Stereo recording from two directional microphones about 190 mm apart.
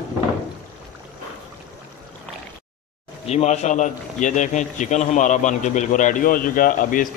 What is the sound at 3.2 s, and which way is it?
A man's voice, 35° left (ahead or behind).